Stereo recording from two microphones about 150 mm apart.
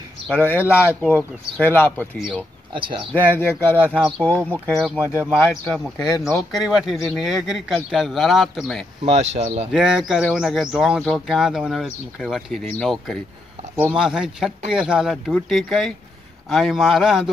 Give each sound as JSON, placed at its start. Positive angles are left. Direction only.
{"t": 0.3, "sound": "speech", "side_deg": 15}
{"t": 2.7, "sound": "speech", "side_deg": -35}
{"t": 3.2, "sound": "speech", "side_deg": 15}
{"t": 5.3, "sound": "speech", "side_deg": 20}
{"t": 6.5, "sound": "speech", "side_deg": 0}
{"t": 9.0, "sound": "speech", "side_deg": -45}
{"t": 9.7, "sound": "speech", "side_deg": -5}